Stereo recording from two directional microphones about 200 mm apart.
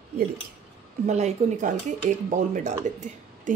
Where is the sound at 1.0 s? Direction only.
35° right (ahead or behind).